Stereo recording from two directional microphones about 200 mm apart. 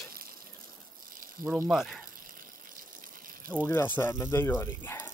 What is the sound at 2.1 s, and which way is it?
Water, 45° right (ahead or behind).